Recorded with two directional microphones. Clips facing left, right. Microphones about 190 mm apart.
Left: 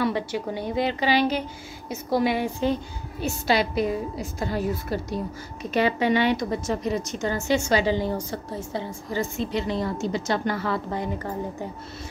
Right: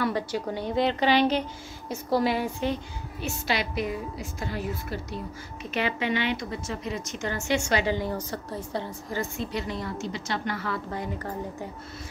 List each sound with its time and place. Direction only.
0.0 s a woman's voice: 15° left (ahead or behind)
1.9 s a woman's voice: 20° left (ahead or behind)
3.2 s a woman's voice: 35° left (ahead or behind)
10.0 s a woman's voice: 40° left (ahead or behind); by 11.1 s 25° left (ahead or behind)